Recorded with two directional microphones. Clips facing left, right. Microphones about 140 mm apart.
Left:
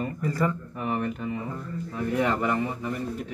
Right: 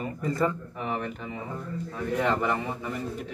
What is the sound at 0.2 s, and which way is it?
Speech, 25° right (ahead or behind).